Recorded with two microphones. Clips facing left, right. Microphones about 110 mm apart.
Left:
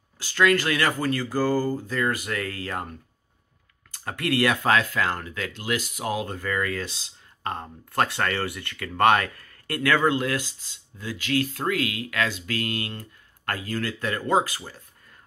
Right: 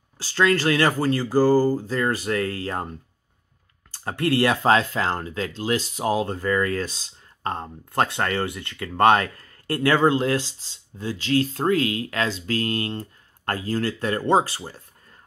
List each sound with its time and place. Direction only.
0.2 s speech: 30° right (ahead or behind)
3.9 s speech: 30° right (ahead or behind)